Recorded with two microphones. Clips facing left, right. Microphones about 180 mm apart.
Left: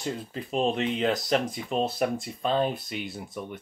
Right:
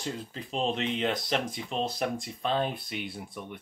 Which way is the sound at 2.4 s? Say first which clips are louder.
Left 3 dB; 40° left (ahead or behind).